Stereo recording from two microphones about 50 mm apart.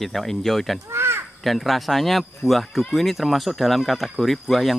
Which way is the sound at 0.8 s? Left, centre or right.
Right.